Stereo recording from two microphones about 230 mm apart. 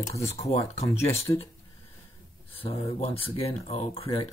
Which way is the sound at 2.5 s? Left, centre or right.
Left.